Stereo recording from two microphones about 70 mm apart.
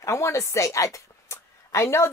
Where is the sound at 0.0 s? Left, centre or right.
Left.